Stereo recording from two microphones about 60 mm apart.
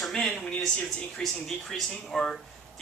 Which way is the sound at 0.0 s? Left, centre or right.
Centre.